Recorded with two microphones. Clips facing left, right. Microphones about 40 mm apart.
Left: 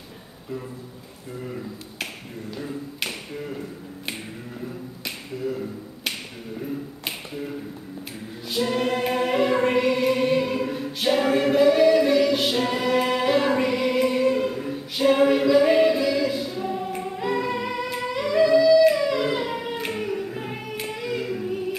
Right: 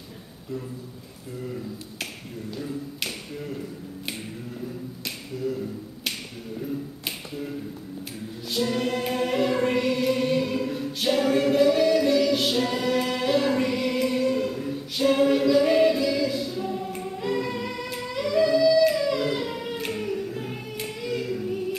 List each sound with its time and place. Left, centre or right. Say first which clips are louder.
2.5 s speech: even; centre
5.0 s finger snapping: left 1 dB; centre
8.5 s choir: left 2 dB; centre
17.8 s music: left 3 dB; centre